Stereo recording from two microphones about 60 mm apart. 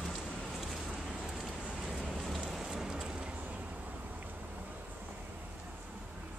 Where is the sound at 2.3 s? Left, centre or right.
Centre.